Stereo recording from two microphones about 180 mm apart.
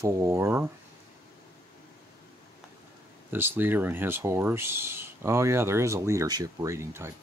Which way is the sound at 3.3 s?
10° right (ahead or behind).